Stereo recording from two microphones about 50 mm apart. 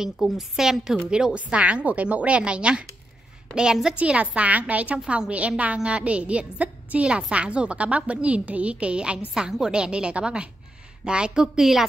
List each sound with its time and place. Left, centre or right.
0.4 s a woman's voice: centre
1.1 s a woman's voice: centre
4.0 s a woman's voice: right; by 11.8 s centre